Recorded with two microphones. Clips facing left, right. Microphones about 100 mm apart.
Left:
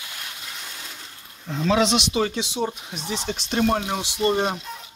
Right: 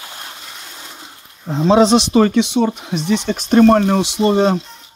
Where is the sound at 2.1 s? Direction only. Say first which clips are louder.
Right 11 dB; 60° right (ahead or behind); by 4.5 s 80° right.